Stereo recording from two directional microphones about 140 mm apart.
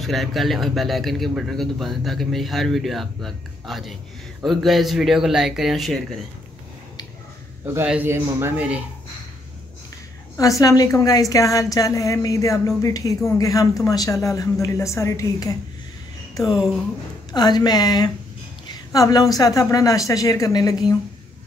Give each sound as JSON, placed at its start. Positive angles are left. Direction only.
{"t": 0.0, "sound": "a man's voice", "side_deg": 0}
{"t": 7.6, "sound": "a man's voice", "side_deg": -15}
{"t": 10.3, "sound": "a woman's voice", "side_deg": 25}
{"t": 16.5, "sound": "a man's voice", "side_deg": -5}
{"t": 17.3, "sound": "a woman's voice", "side_deg": 30}